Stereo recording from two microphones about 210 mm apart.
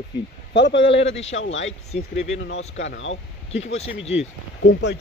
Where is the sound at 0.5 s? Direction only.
55° left (ahead or behind).